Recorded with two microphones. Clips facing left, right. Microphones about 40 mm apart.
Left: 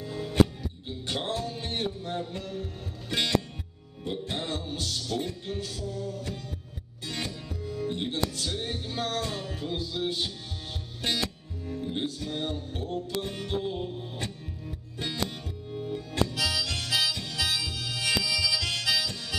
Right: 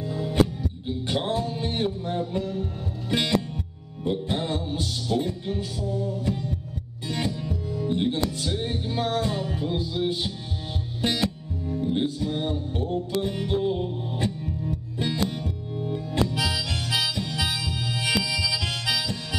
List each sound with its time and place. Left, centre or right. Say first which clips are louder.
0.1 s music: right 1 dB; centre